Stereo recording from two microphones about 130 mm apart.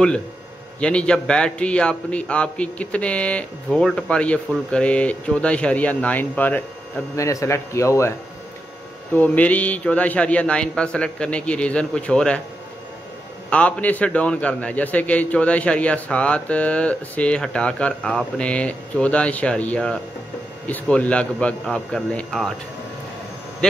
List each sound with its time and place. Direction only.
0.7 s a man's voice: 10° left (ahead or behind)
7.2 s speech: 25° left (ahead or behind)
9.1 s a man's voice: 10° left (ahead or behind)
13.5 s a man's voice: 10° left (ahead or behind)
23.6 s speech: 5° left (ahead or behind)